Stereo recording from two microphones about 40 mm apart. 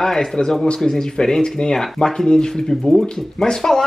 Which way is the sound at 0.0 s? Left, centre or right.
Centre.